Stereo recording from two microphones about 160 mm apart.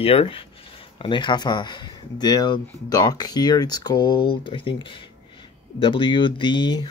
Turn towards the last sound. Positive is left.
turn(degrees=30)  # may be behind; listen again after turning